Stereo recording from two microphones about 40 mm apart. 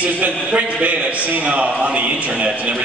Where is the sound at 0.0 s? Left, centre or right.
Right.